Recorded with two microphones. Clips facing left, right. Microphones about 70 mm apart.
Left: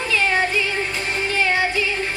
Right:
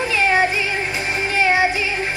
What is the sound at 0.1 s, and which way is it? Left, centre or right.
Music, right.